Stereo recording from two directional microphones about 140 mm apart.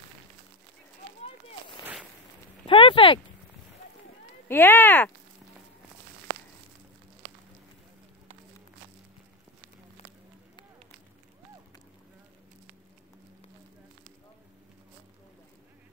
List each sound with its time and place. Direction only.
2.6 s speech: 40° left (ahead or behind)
4.5 s speech: 15° left (ahead or behind)
7.2 s fire: 80° right